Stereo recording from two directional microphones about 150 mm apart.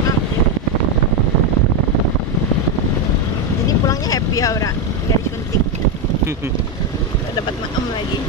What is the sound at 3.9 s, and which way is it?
Vehicle, 25° left (ahead or behind).